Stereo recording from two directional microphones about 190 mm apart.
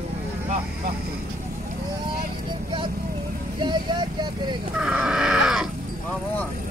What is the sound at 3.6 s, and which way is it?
Vehicle, 25° right (ahead or behind).